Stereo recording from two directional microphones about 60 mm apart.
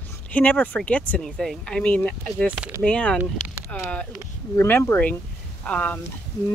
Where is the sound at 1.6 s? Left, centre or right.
Centre.